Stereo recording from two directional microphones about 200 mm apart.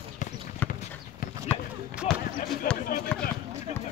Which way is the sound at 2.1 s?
Centre (ahead or behind).